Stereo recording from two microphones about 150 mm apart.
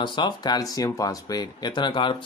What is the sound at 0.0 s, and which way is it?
Speech, 30° left (ahead or behind).